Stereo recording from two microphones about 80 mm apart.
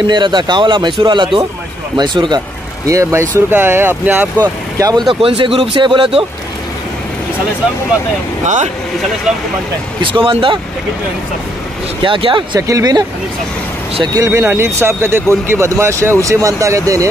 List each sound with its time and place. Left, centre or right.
0.0 s speech: right
2.0 s speech: right
2.9 s speech: right
4.4 s speech: right
5.4 s a man's voice: right
9.9 s a man's voice: right
12.0 s a man's voice: right
12.5 s speech: right
14.1 s speech: right